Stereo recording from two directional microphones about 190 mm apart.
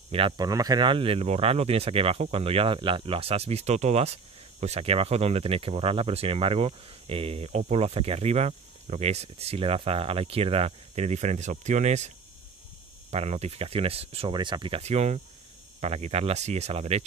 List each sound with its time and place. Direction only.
0.1 s speech: 25° right (ahead or behind)
13.1 s speech: 35° right (ahead or behind)